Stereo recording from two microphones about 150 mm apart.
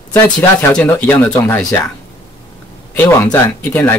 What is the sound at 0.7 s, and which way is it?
Speech, 10° left (ahead or behind).